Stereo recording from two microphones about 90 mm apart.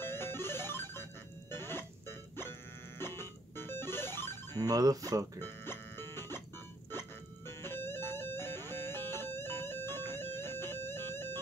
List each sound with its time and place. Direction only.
0.0 s music: 25° left (ahead or behind)
4.6 s speech: 45° right (ahead or behind)
5.4 s music: 25° left (ahead or behind)